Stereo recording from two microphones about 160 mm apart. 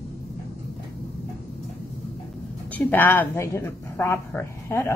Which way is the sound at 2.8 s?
10° left (ahead or behind).